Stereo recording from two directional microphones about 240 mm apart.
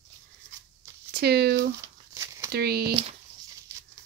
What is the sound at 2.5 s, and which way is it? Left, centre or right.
Speech, right.